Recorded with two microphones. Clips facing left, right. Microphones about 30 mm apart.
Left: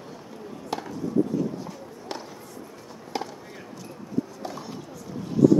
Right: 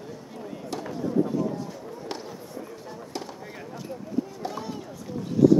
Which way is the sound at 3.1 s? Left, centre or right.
Centre.